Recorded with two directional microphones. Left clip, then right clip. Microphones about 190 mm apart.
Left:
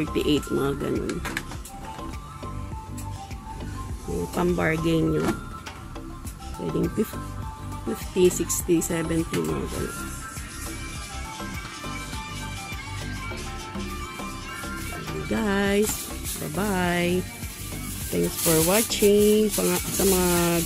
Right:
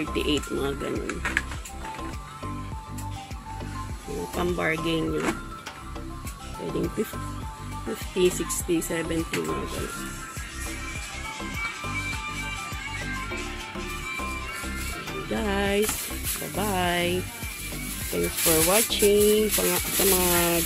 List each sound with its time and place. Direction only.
0.1 s speech: 15° left (ahead or behind)
1.0 s speech: 45° left (ahead or behind)
4.4 s speech: 5° left (ahead or behind)
8.2 s speech: centre (ahead or behind)
15.0 s music: 5° left (ahead or behind)
16.5 s speech: centre (ahead or behind)